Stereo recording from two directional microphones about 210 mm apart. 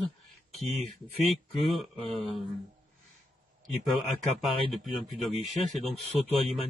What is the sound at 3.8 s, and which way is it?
Speech, centre (ahead or behind).